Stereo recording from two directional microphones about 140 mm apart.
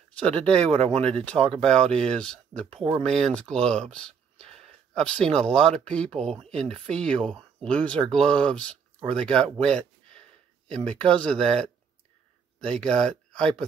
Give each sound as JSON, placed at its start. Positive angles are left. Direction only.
{"t": 0.2, "sound": "speech", "side_deg": 10}
{"t": 0.6, "sound": "speech", "side_deg": -45}
{"t": 1.1, "sound": "speech", "side_deg": 5}
{"t": 12.5, "sound": "speech", "side_deg": 5}